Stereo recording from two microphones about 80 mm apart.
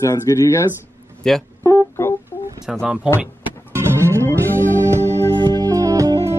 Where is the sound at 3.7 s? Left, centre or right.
Right.